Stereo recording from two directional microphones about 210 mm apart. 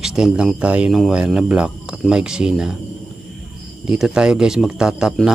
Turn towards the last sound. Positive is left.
turn(degrees=0)  # may be behind; listen again after turning